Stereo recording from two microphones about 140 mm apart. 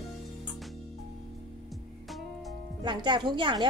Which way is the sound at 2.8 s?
35° right (ahead or behind).